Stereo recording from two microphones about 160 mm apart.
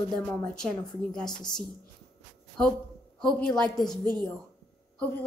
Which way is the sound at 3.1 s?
5° left (ahead or behind).